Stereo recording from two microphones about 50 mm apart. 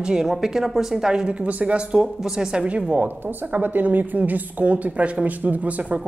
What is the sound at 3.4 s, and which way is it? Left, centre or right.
A woman's voice, right.